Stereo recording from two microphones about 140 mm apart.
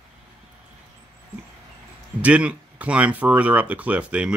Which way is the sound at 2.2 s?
10° right (ahead or behind).